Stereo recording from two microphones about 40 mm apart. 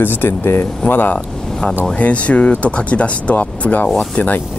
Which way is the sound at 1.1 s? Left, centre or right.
Left.